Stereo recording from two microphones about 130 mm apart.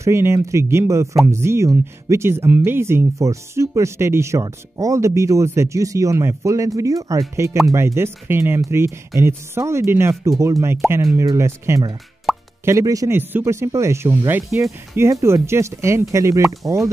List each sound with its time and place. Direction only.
0.0 s speech: 20° right (ahead or behind)
12.3 s plop: centre (ahead or behind)
12.6 s speech: 25° right (ahead or behind)